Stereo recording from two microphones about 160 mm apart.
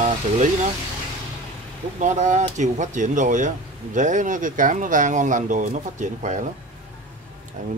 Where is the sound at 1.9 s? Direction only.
50° right (ahead or behind).